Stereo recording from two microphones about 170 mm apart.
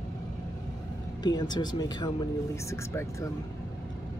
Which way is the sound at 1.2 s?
25° left (ahead or behind).